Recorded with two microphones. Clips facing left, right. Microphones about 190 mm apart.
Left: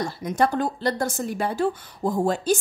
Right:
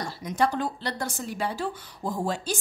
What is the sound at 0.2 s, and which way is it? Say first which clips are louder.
A woman's voice: left 3 dB; 50° left (ahead or behind).